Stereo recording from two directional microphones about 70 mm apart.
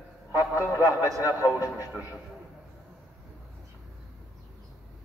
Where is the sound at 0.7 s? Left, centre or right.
Left.